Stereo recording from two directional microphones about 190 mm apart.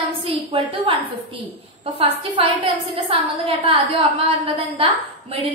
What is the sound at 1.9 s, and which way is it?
A woman's voice, 30° right (ahead or behind).